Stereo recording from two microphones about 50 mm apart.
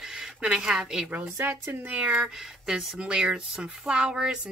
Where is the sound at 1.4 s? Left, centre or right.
Right.